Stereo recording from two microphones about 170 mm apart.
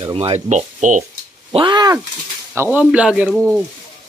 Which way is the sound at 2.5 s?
15° right (ahead or behind).